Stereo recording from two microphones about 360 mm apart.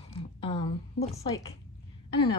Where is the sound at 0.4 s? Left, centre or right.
Centre.